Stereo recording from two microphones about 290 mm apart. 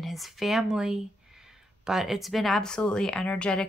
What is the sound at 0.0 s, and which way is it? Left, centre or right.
Speech, centre.